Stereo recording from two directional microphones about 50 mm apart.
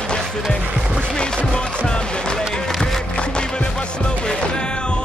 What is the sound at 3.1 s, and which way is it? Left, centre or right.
Music, centre.